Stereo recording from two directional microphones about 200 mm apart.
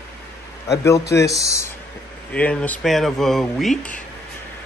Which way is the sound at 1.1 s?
15° left (ahead or behind).